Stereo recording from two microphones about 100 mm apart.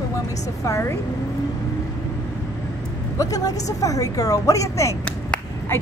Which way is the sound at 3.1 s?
35° left (ahead or behind).